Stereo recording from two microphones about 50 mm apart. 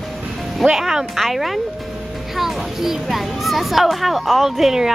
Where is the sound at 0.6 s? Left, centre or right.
Centre.